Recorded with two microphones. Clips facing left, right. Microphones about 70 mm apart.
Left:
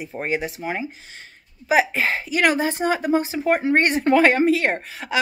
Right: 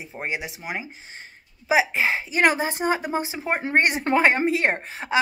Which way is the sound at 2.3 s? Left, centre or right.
Right.